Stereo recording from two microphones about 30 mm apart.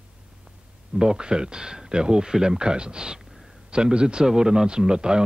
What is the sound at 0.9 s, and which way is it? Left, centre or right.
Speech, right.